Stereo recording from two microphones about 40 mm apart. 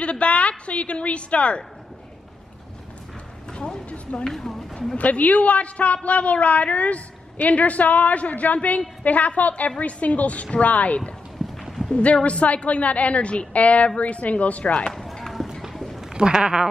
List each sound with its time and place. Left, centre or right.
0.0 s a woman's voice: left
3.5 s a sound: centre
4.3 s a woman's voice: centre
4.9 s a woman's voice: left
11.4 s clip-clop: centre
11.9 s a woman's voice: left
14.9 s run: centre
15.7 s a sound: centre
16.1 s a woman's voice: right